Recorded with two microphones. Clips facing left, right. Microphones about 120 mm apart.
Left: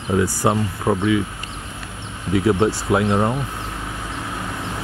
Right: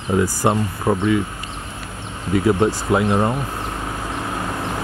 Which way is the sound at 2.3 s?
Centre (ahead or behind).